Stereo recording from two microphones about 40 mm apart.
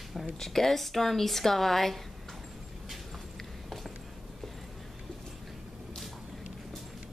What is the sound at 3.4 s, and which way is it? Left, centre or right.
Walk, centre.